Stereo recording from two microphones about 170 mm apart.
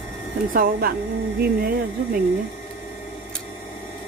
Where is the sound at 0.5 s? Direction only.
60° right (ahead or behind).